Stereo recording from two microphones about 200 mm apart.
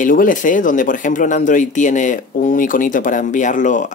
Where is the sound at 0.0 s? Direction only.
40° left (ahead or behind).